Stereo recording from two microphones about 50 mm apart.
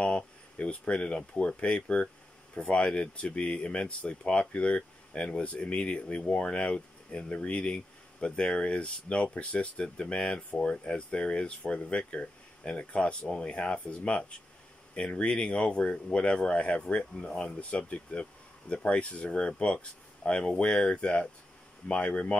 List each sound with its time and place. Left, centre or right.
0.0 s speech: left